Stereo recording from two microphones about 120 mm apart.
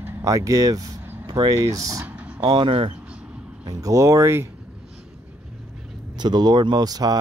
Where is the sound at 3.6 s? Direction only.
30° right (ahead or behind).